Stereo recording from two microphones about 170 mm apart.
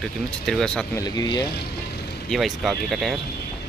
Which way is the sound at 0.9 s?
25° left (ahead or behind).